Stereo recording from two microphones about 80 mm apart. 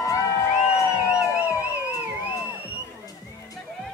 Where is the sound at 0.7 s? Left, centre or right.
Left.